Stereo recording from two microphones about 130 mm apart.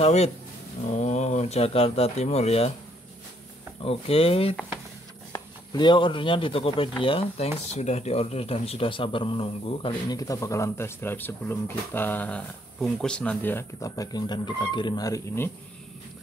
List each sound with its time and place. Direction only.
0.0 s speech: 55° left (ahead or behind)
0.8 s speech: 65° left (ahead or behind)
3.8 s speech: 50° left (ahead or behind)
5.3 s speech: 35° left (ahead or behind)
10.0 s speech: 25° left (ahead or behind)